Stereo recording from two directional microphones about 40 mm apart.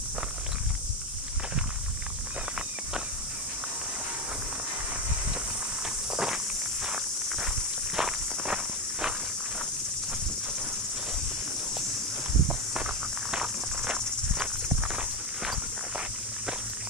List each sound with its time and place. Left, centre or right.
6.1 s walk: centre
12.4 s walk: right